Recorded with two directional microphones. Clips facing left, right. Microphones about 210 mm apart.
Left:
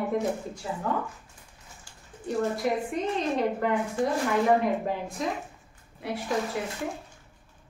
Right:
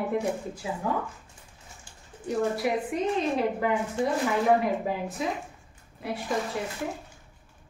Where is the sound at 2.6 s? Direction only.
10° right (ahead or behind).